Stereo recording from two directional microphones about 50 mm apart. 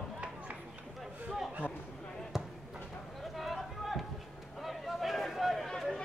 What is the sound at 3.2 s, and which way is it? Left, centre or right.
Run, centre.